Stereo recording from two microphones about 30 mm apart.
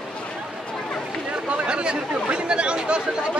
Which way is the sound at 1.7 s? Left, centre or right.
Right.